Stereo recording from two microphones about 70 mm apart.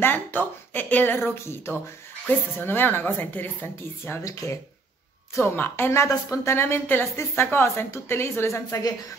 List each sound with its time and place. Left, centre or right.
0.0 s speech: left
4.2 s speech: left
5.4 s a woman's voice: left
8.6 s speech: left